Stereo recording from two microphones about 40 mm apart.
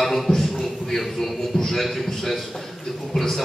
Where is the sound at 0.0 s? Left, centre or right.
Centre.